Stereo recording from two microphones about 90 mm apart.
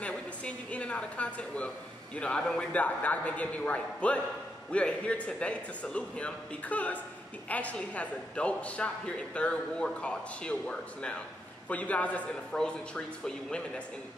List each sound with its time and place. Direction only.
0.0 s a woman's voice: 15° left (ahead or behind)